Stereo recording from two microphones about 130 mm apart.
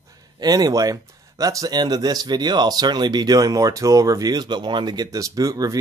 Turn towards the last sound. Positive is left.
turn(degrees=-30)  # may be behind; listen again after turning